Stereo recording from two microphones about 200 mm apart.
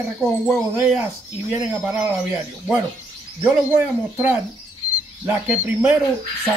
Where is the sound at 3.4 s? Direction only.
10° right (ahead or behind).